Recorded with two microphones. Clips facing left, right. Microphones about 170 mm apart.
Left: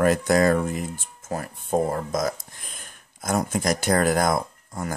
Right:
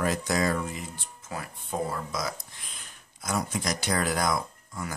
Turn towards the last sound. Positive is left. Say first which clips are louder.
# left 6 dB
turn(degrees=50)  # may be behind; listen again after turning